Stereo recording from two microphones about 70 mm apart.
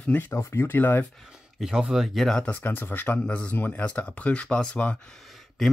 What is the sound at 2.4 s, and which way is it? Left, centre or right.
Speech, left.